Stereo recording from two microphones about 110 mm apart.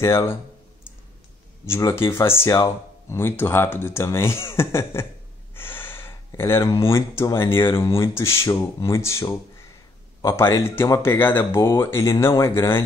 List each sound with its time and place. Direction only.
0.0 s speech: 25° left (ahead or behind)
1.7 s speech: 25° left (ahead or behind)
2.5 s speech: 35° left (ahead or behind)
3.2 s speech: 20° left (ahead or behind)
5.5 s gasp: 20° left (ahead or behind)
6.9 s speech: 25° left (ahead or behind)